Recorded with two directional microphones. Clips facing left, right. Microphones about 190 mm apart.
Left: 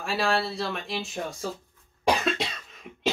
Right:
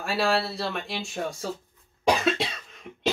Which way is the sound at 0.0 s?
Centre (ahead or behind).